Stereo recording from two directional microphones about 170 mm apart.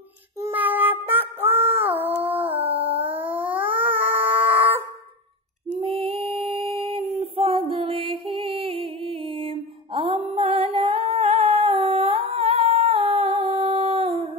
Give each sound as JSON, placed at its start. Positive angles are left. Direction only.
{"t": 0.4, "sound": "child singing", "side_deg": -10}
{"t": 2.2, "sound": "howl", "side_deg": -10}
{"t": 2.9, "sound": "howl", "side_deg": -35}
{"t": 3.2, "sound": "a sound", "side_deg": -10}
{"t": 5.8, "sound": "female singing", "side_deg": -30}